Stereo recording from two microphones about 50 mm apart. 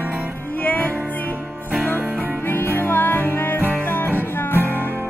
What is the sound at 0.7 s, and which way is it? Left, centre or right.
Music, left.